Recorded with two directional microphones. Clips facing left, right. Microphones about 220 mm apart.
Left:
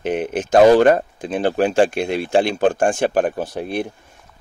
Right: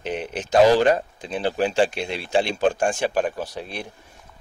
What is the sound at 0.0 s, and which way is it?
Speech, 50° left (ahead or behind).